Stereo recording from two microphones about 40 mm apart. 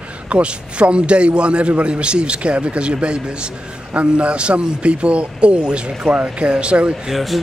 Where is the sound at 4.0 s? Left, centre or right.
Right.